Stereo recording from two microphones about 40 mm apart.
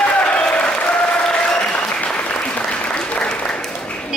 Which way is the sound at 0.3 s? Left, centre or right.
Left.